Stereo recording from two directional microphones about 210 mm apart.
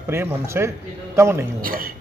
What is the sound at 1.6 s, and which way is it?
Speech, 45° right (ahead or behind).